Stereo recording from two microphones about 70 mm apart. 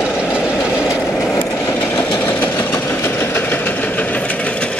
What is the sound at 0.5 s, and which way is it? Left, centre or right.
Train, left.